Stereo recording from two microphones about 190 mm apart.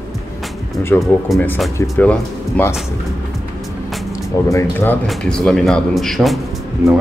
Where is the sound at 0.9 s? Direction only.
10° left (ahead or behind).